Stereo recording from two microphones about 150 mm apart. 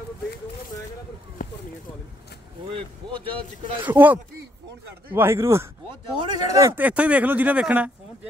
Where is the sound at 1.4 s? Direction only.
65° left (ahead or behind).